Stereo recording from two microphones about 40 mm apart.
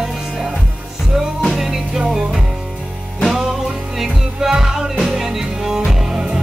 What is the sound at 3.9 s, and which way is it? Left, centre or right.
Music, centre.